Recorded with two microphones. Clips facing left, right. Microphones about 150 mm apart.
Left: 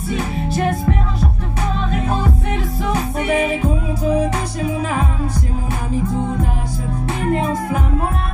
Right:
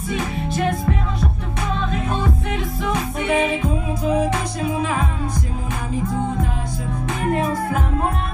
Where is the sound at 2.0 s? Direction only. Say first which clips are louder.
Left 2 dB; 35° left (ahead or behind).